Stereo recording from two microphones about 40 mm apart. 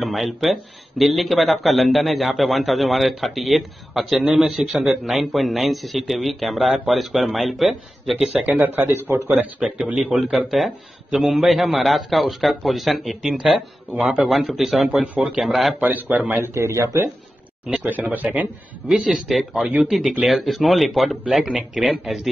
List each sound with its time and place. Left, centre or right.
0.0 s a man's voice: centre
8.5 s speech: right
9.6 s a man's voice: centre
15.8 s speech: right
16.3 s speech: right
17.8 s speech: right
19.1 s a man's voice: centre